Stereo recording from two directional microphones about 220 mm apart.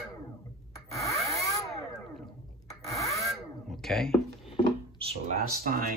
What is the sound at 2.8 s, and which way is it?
Rub, 15° left (ahead or behind).